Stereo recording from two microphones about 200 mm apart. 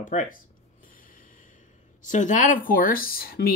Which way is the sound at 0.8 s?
40° left (ahead or behind).